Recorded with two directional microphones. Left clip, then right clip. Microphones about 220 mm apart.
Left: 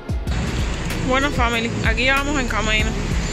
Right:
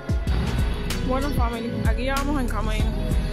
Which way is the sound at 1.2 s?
10° right (ahead or behind).